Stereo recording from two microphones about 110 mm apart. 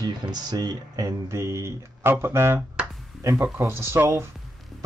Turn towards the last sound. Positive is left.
turn(degrees=-25)  # may be behind; listen again after turning